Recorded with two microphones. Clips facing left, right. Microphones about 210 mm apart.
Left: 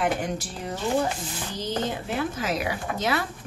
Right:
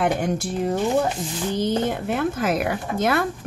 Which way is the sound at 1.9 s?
55° right (ahead or behind).